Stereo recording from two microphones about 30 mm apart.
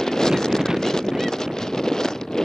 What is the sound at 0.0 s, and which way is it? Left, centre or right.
Wind noise, centre.